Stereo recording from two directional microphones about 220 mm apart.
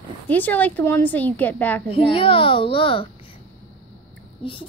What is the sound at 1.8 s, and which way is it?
A child's voice, 25° left (ahead or behind).